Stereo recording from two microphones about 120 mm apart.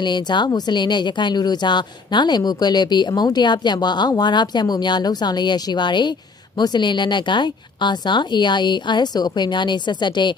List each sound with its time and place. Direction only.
0.0 s speech: 40° left (ahead or behind)